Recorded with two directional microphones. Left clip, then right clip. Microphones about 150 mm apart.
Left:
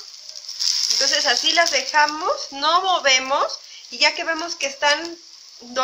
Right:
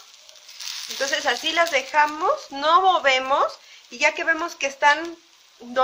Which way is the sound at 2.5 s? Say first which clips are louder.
Right 1 dB; 75° right (ahead or behind).